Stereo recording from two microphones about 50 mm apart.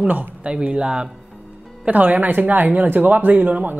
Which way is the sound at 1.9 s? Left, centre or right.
Right.